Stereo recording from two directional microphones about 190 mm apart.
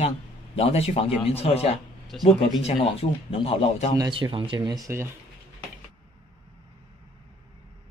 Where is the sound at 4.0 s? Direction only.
25° right (ahead or behind).